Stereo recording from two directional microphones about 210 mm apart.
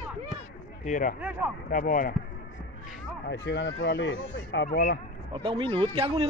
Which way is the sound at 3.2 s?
55° left (ahead or behind).